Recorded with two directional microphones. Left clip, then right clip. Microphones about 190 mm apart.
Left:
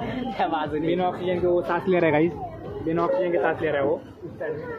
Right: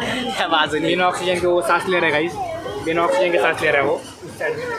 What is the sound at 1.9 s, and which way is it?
Speech, 20° left (ahead or behind).